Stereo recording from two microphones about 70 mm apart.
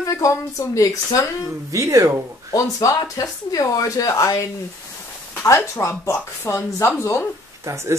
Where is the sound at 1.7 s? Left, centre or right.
Right.